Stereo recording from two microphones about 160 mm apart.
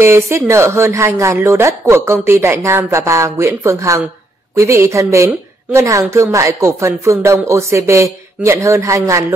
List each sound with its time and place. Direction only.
0.0 s a woman's voice: 15° right (ahead or behind)